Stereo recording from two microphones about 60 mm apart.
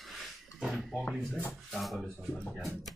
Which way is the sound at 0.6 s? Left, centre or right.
Centre.